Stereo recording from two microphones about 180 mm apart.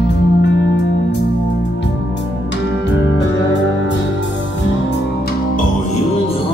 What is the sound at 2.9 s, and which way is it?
Music, 85° left.